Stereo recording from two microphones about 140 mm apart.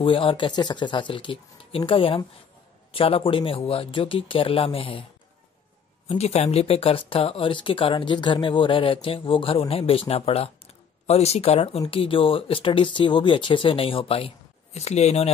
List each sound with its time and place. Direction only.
0.0 s speech: 40° left (ahead or behind)
6.0 s speech: 50° left (ahead or behind)